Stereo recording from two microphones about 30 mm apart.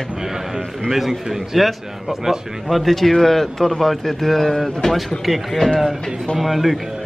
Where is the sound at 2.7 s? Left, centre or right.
Centre.